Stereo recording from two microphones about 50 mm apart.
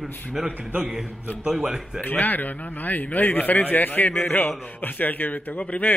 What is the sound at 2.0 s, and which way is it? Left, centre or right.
Speech, left.